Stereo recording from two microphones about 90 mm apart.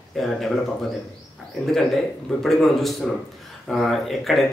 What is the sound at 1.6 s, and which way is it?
Speech, 5° left (ahead or behind).